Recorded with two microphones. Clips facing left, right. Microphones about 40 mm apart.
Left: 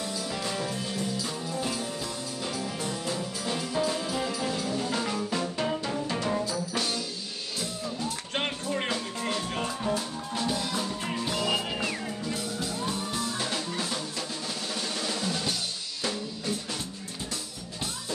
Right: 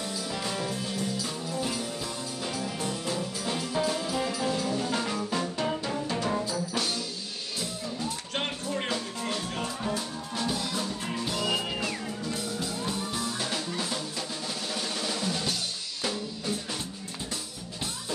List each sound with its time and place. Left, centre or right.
0.0 s music: centre
8.3 s music: left
9.8 s music: centre
13.1 s music: centre
14.7 s drum: centre
16.0 s drum kit: centre